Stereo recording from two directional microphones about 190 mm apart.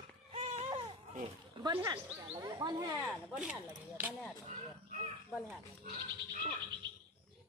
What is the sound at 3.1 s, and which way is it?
Speech, centre (ahead or behind).